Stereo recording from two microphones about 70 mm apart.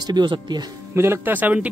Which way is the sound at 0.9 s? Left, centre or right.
Right.